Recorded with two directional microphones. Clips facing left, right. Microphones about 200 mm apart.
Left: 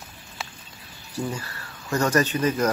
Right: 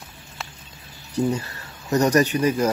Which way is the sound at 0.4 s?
Centre (ahead or behind).